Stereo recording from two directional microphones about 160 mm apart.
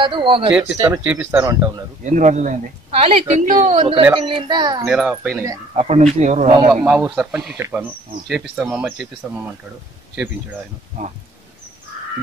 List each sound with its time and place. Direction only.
0.0 s speech: 30° right (ahead or behind)
0.7 s speech: 15° right (ahead or behind)
2.0 s a child's voice: 50° right (ahead or behind); by 4.8 s 25° right (ahead or behind)
4.8 s speech: 5° right (ahead or behind)
5.8 s speech: 45° right (ahead or behind)
6.7 s speech: 10° right (ahead or behind)
7.5 s speech: 15° right (ahead or behind)